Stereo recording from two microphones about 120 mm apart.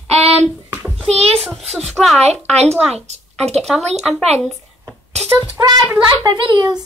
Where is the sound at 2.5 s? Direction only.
65° right (ahead or behind).